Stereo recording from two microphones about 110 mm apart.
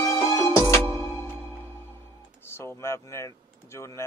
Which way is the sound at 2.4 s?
20° left (ahead or behind).